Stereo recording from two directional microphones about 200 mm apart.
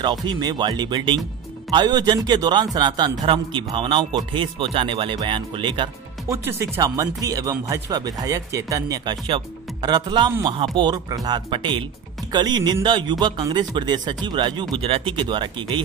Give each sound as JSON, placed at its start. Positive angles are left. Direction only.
{"t": 0.0, "sound": "a man's voice", "side_deg": -20}